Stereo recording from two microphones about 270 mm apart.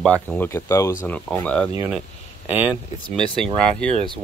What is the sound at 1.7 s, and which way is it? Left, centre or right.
Speech, centre.